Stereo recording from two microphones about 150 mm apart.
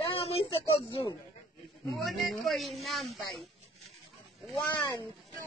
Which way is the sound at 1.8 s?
Centre (ahead or behind).